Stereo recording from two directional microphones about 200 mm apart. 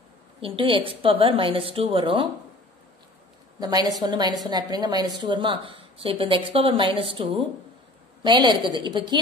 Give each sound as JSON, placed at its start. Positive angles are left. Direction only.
{"t": 0.4, "sound": "a woman's voice", "side_deg": -25}
{"t": 3.5, "sound": "a woman's voice", "side_deg": -20}